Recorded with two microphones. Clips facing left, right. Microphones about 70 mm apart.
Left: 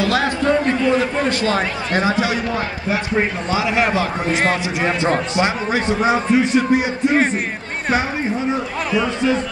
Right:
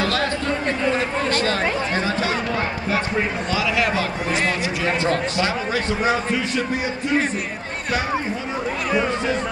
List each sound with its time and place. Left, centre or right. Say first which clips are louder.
0.0 s speech: left 4 dB; centre
3.2 s a man's voice: left 3 dB; left